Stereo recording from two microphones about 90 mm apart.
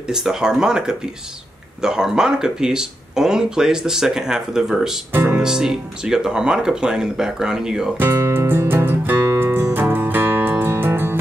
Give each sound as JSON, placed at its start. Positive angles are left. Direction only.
{"t": 0.1, "sound": "speech", "side_deg": -5}
{"t": 8.1, "sound": "music", "side_deg": -30}